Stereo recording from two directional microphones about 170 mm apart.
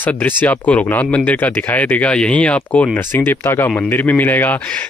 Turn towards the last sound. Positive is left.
turn(degrees=10)  # may be behind; listen again after turning